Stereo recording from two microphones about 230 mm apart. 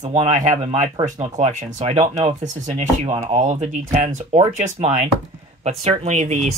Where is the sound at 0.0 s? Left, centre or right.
Right.